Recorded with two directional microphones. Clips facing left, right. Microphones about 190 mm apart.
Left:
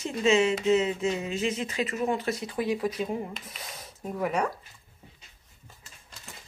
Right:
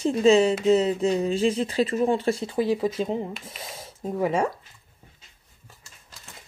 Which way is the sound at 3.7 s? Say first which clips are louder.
Right 5 dB; 25° right (ahead or behind).